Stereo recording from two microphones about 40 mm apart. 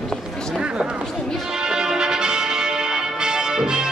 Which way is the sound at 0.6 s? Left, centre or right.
Right.